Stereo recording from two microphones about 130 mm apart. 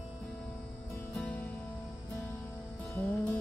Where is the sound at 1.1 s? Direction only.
10° left (ahead or behind).